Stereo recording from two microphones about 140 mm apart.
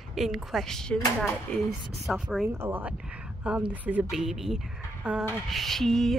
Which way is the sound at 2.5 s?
15° right (ahead or behind).